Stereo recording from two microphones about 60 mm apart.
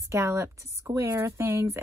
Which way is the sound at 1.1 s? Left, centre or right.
Right.